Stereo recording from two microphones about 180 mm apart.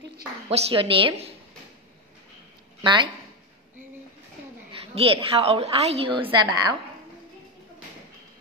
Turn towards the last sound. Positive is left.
turn(degrees=-20)  # may be behind; listen again after turning